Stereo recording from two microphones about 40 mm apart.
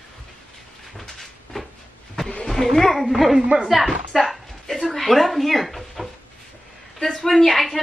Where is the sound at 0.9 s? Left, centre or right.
Centre.